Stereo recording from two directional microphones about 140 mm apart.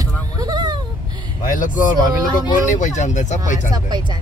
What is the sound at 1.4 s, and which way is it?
Speech, 75° left (ahead or behind).